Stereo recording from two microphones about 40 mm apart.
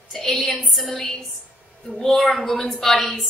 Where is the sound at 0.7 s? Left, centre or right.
Centre.